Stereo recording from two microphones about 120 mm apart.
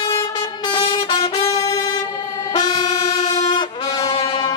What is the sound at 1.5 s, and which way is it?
Brass instrument, 25° left (ahead or behind).